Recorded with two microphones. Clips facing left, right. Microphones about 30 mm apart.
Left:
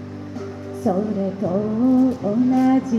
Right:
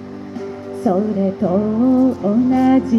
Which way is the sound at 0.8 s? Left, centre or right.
Right.